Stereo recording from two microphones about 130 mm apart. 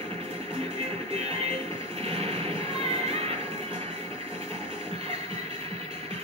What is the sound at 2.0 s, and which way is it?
Music, 50° right (ahead or behind).